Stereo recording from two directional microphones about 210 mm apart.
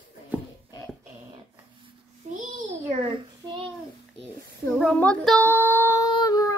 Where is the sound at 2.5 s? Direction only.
25° right (ahead or behind).